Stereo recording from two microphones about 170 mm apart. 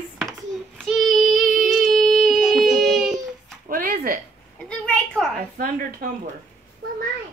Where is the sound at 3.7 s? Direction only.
55° right (ahead or behind).